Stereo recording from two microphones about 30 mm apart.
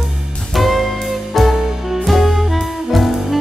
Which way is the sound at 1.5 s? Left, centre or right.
Centre.